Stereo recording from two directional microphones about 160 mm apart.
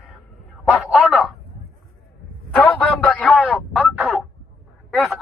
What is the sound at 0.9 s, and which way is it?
Speech, centre (ahead or behind).